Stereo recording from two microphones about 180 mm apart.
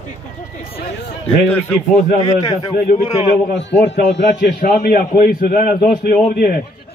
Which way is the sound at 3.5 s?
75° left (ahead or behind).